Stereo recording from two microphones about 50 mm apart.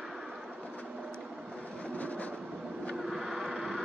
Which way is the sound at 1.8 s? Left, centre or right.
Left.